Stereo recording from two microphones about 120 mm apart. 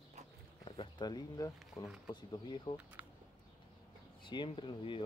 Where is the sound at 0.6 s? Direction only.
40° left (ahead or behind).